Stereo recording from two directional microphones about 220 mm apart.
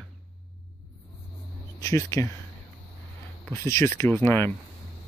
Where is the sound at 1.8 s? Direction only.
15° left (ahead or behind).